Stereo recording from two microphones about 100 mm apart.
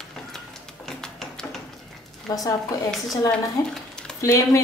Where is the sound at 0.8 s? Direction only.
5° left (ahead or behind).